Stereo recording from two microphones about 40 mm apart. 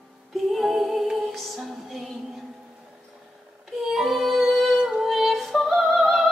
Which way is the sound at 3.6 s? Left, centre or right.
Centre.